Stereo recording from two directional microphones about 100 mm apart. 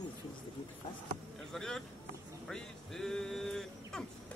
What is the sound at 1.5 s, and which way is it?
Vehicle, 5° left (ahead or behind).